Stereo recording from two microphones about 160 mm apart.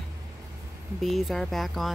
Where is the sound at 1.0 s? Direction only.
Centre (ahead or behind).